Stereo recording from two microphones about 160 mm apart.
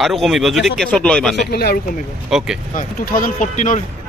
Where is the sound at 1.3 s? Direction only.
75° left (ahead or behind).